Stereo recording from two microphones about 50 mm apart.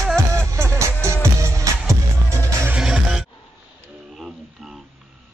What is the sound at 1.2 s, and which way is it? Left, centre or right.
Music, right.